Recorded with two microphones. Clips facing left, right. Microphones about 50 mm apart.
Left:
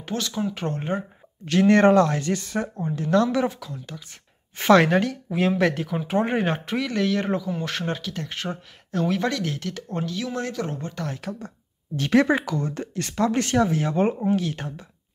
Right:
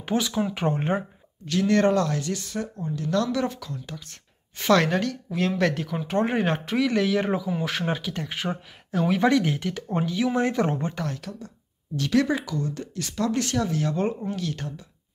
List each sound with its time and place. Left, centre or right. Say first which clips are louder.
0.0 s speech: right 2 dB; centre
1.4 s speech: left 4 dB; left
3.4 s speech: left 2 dB; centre
4.6 s speech: left 4 dB; centre; by 11.0 s right
11.3 s speech: left 4 dB; left